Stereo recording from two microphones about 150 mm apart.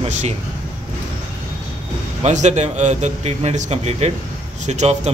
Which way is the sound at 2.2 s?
50° right (ahead or behind).